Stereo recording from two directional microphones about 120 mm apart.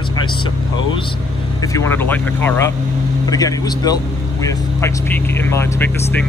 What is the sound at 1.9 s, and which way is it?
Speech, 15° left (ahead or behind).